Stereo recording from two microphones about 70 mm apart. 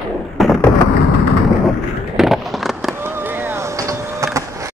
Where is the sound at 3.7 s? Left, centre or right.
Right.